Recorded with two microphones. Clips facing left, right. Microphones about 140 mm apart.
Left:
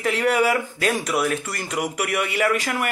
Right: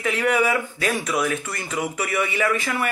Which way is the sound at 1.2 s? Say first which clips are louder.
Left 1 dB; 10° left (ahead or behind).